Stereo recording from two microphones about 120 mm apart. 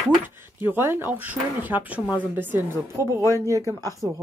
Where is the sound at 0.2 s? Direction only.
15° right (ahead or behind).